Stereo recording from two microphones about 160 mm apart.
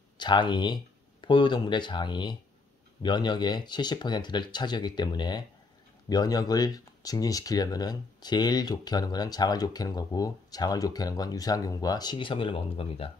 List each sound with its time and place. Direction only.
0.2 s speech: 30° left (ahead or behind)